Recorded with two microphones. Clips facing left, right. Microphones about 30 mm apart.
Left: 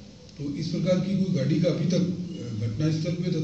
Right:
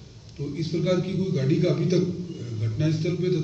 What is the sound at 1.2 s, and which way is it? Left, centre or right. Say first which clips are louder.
Speech: right 1 dB; right.